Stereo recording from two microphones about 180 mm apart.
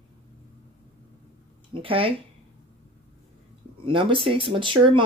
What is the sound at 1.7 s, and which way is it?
Speech, 30° right (ahead or behind).